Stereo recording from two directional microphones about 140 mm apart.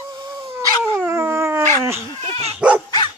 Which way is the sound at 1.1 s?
15° right (ahead or behind).